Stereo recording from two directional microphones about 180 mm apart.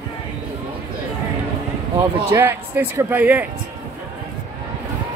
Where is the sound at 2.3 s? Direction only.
10° right (ahead or behind).